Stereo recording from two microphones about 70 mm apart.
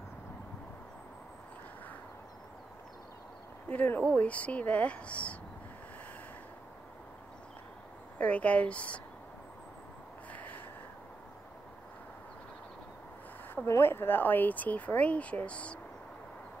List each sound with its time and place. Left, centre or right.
3.6 s speech: left
8.2 s speech: centre
10.3 s a sound: left
13.7 s speech: left; by 15.8 s centre